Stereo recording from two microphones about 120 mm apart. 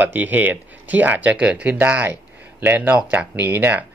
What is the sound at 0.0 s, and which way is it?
Speech, 15° right (ahead or behind).